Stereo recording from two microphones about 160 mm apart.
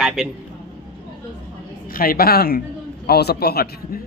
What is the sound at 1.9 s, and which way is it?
Speech, 65° left (ahead or behind).